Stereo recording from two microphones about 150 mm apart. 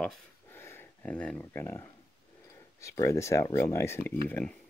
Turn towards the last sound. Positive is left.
turn(degrees=10)  # may be behind; listen again after turning